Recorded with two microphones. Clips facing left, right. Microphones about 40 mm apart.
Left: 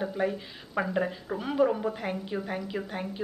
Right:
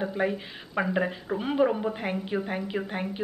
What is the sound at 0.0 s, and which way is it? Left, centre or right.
A woman's voice, right.